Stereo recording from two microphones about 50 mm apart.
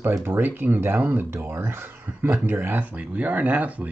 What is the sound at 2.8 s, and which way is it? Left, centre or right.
Speech, right.